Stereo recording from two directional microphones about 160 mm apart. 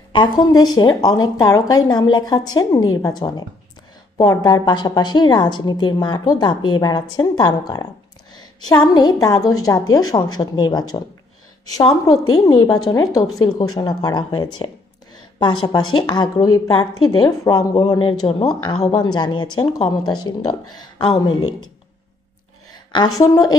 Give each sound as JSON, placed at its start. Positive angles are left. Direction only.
{"t": 0.1, "sound": "a woman's voice", "side_deg": 25}
{"t": 22.9, "sound": "a woman's voice", "side_deg": 25}